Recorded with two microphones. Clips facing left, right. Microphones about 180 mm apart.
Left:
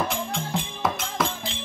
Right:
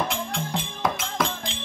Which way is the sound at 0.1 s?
Centre (ahead or behind).